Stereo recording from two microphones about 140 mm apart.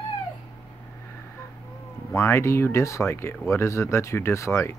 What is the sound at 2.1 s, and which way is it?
Speech, 20° left (ahead or behind).